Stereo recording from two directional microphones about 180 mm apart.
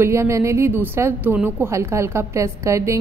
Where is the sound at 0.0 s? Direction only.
15° right (ahead or behind).